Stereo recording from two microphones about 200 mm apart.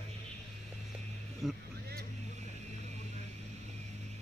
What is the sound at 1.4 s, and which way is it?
Speech, centre (ahead or behind).